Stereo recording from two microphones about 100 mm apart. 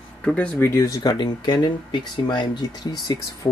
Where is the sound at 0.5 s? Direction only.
25° left (ahead or behind); by 3.5 s 40° left (ahead or behind).